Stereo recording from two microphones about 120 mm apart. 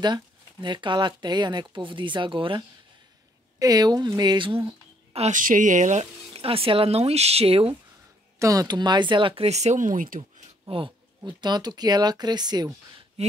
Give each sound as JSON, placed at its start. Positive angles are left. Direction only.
{"t": 0.0, "sound": "speech", "side_deg": -40}
{"t": 3.5, "sound": "speech", "side_deg": -30}
{"t": 4.6, "sound": "speech", "side_deg": -60}
{"t": 6.3, "sound": "speech", "side_deg": -50}
{"t": 8.4, "sound": "speech", "side_deg": -30}
{"t": 10.7, "sound": "speech", "side_deg": -45}